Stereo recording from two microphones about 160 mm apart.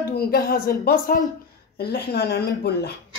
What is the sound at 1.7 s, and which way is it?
Speech, 85° left.